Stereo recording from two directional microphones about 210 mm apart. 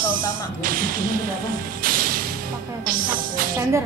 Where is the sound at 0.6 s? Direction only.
45° right (ahead or behind).